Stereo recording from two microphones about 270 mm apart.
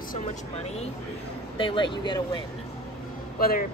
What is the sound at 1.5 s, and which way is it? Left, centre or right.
Speech, centre.